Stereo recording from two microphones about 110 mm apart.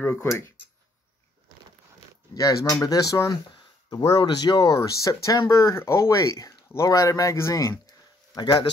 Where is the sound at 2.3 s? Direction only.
35° left (ahead or behind).